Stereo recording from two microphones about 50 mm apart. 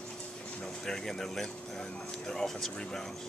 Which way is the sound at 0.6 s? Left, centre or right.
Centre.